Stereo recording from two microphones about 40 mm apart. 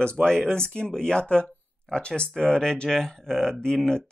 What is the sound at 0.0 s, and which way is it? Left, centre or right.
Speech, left.